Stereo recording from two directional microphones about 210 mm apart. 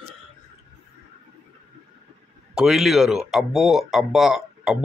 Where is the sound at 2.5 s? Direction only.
Centre (ahead or behind).